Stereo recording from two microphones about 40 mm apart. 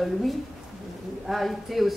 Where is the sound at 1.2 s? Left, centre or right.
Centre.